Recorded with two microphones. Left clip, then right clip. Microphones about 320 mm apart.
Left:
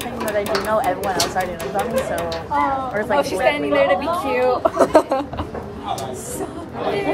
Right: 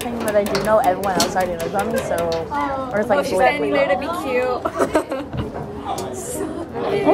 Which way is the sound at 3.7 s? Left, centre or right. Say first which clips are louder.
Left 2 dB; centre.